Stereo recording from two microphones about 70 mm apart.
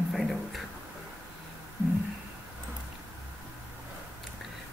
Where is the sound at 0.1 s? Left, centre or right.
Centre.